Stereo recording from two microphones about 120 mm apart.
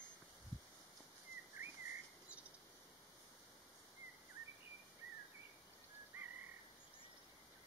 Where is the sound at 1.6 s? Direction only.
15° right (ahead or behind).